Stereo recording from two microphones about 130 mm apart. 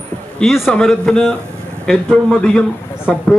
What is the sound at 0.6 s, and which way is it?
A man's voice, 10° left (ahead or behind).